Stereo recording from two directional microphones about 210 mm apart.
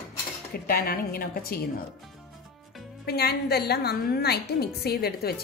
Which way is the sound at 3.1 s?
50° left (ahead or behind).